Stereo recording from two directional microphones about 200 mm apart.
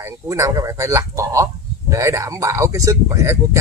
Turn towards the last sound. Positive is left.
turn(degrees=-15)  # may be behind; listen again after turning